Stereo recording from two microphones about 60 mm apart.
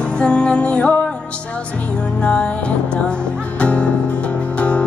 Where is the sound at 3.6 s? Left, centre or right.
Centre.